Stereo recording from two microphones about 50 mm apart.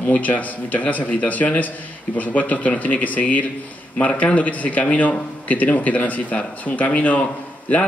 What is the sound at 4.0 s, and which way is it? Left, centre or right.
A man's voice, left.